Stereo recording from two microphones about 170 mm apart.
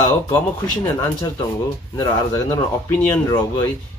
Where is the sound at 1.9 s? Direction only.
20° left (ahead or behind).